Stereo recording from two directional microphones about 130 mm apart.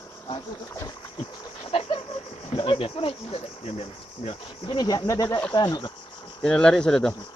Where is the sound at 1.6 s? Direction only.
45° left (ahead or behind).